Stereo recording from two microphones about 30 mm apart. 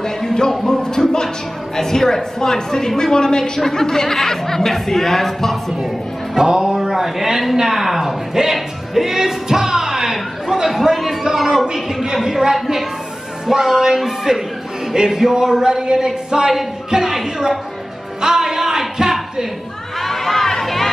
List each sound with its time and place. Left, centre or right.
0.0 s a sound: centre
0.7 s music: centre
1.8 s a woman's voice: centre
6.3 s a woman's voice: centre
8.5 s music: centre
10.6 s a woman's voice: centre
11.7 s a woman's voice: centre
16.9 s a woman's voice: centre
18.2 s music: centre
20.0 s crowd: centre